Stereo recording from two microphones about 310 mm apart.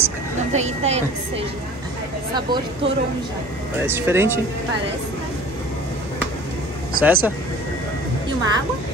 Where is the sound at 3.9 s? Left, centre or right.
Centre.